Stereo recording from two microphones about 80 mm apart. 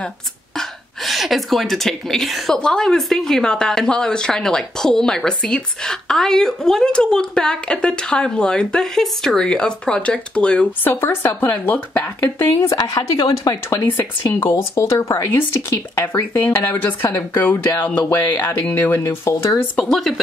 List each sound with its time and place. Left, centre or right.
0.6 s speech: centre
10.8 s speech: left
12.6 s speech: left
16.1 s speech: left
18.9 s speech: left
19.8 s speech: centre